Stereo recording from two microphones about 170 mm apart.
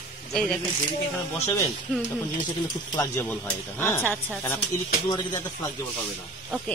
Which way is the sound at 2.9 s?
15° left (ahead or behind).